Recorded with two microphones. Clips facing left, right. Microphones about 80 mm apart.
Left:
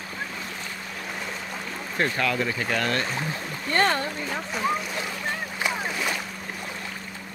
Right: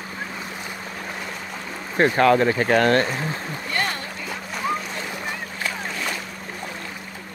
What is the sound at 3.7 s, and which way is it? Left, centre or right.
Speech, left.